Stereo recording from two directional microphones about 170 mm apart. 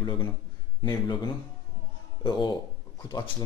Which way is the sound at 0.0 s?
25° left (ahead or behind).